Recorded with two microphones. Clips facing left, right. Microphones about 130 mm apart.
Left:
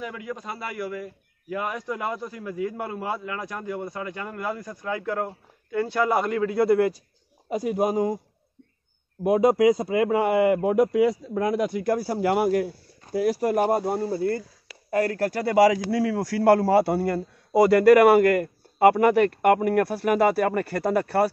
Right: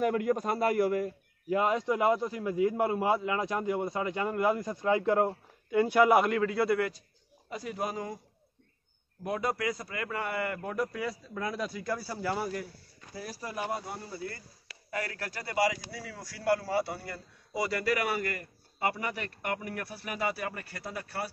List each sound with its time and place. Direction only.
0.0 s a man's voice: 50° right (ahead or behind)
1.5 s a man's voice: 25° right (ahead or behind); by 6.4 s 5° right (ahead or behind)
6.4 s a man's voice: 15° left (ahead or behind)
9.2 s a man's voice: 15° left (ahead or behind)
10.2 s speech: 90° left
10.9 s a man's voice: 15° left (ahead or behind)
11.5 s a man's voice: 65° left (ahead or behind)